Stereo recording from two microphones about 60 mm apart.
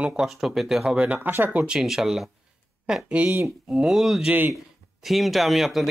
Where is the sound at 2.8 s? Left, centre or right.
Centre.